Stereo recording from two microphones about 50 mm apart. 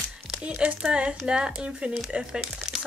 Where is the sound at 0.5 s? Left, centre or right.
Right.